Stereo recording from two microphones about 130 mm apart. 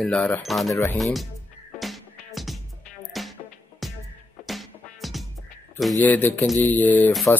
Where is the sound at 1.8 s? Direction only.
Centre (ahead or behind).